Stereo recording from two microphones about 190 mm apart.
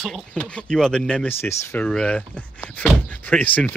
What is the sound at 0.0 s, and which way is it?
Speech, centre (ahead or behind).